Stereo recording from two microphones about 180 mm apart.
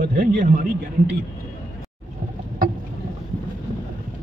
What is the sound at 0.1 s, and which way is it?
Speech, 50° right (ahead or behind).